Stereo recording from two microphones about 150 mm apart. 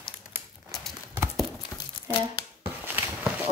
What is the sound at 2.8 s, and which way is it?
Walk, 15° right (ahead or behind).